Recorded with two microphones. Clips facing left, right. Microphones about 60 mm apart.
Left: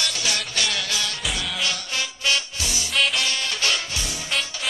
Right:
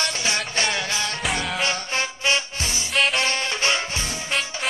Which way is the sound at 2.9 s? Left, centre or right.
Centre.